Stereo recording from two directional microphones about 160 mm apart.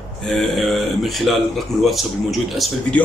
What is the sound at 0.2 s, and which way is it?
A man's voice, 5° left (ahead or behind).